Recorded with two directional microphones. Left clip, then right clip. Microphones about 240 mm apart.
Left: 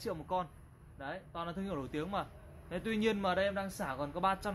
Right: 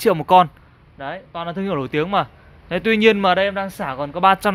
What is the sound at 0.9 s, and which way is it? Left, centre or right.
Speech, right.